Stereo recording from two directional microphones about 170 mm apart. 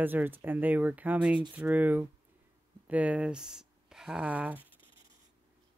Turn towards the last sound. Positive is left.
turn(degrees=-10)  # may be behind; listen again after turning